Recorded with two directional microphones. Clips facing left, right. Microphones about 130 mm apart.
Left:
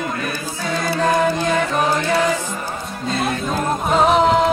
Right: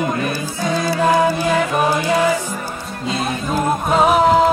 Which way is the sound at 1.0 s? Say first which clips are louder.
Right 2 dB; 10° right (ahead or behind).